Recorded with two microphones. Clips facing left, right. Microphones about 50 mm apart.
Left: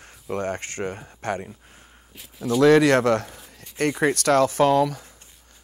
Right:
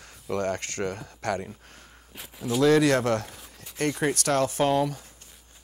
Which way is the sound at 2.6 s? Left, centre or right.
Left.